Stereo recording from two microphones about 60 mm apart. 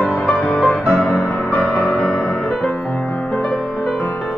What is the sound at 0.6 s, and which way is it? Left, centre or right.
Music, centre.